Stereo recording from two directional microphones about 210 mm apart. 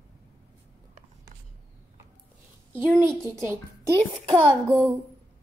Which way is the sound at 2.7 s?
10° right (ahead or behind).